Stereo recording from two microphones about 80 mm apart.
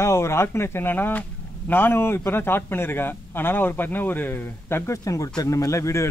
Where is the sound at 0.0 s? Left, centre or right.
Left.